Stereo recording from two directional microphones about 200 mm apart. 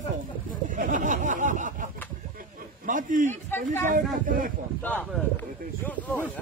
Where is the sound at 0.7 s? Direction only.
40° right (ahead or behind).